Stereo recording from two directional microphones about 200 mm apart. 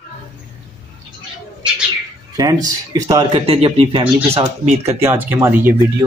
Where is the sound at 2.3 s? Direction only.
20° right (ahead or behind).